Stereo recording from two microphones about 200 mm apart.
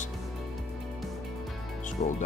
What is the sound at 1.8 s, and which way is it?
Music, 35° left (ahead or behind).